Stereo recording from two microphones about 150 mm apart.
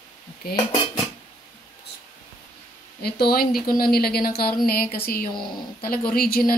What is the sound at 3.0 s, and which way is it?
Speech, 90° left.